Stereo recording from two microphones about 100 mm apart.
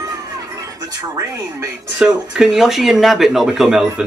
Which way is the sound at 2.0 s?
5° right (ahead or behind).